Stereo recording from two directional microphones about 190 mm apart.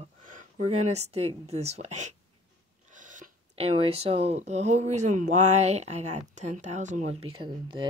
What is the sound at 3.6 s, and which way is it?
Speech, 30° right (ahead or behind).